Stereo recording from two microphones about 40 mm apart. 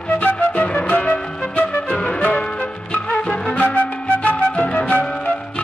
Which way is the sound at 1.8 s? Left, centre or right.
Left.